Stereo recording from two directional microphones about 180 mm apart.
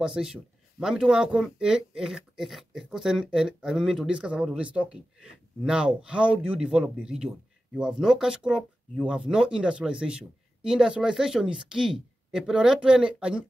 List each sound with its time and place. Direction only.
0.0 s speech: 5° right (ahead or behind)